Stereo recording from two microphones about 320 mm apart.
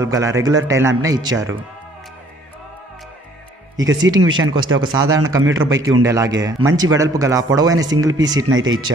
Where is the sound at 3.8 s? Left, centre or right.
Right.